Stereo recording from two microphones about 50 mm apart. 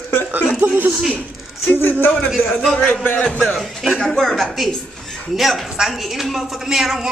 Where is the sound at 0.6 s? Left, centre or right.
Right.